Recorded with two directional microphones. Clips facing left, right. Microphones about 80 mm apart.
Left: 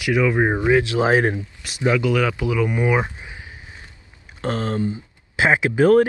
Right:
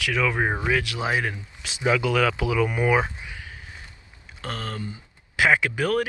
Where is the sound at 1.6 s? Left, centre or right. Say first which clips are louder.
Left 2 dB; centre.